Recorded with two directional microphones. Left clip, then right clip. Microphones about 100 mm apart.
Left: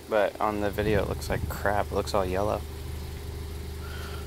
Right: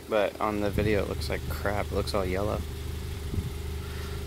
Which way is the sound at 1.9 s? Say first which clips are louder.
Left 2 dB; 5° right (ahead or behind).